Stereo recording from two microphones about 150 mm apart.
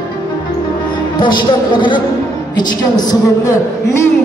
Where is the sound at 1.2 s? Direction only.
30° left (ahead or behind).